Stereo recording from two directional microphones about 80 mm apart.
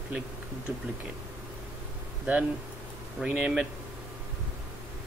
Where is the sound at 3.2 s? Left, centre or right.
Centre.